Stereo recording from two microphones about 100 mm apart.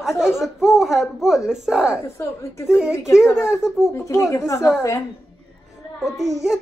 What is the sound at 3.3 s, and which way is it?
Speech, 5° right (ahead or behind).